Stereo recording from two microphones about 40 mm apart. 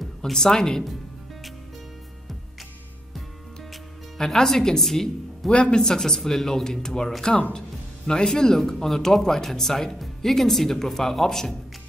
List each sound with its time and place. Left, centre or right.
0.2 s speech: centre
4.2 s speech: centre
5.5 s speech: left
5.8 s speech: centre